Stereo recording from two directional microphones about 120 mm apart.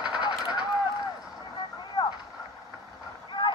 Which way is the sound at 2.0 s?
30° left (ahead or behind).